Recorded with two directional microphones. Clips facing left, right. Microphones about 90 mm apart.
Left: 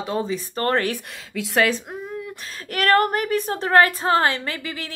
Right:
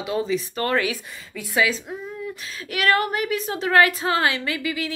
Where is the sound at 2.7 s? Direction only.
45° left (ahead or behind).